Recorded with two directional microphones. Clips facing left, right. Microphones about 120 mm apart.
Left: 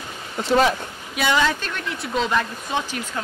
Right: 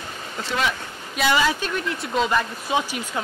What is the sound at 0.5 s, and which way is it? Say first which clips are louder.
Speech: left 7 dB; 35° left (ahead or behind).